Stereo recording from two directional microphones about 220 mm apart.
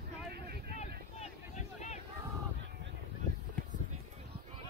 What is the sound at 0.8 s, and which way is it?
Boat, 30° left (ahead or behind).